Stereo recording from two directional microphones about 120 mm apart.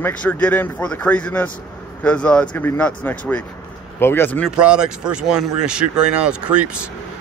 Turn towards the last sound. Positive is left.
turn(degrees=-10)  # may be behind; listen again after turning